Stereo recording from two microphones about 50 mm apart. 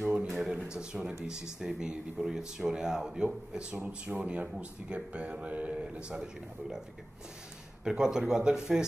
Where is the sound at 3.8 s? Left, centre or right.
Right.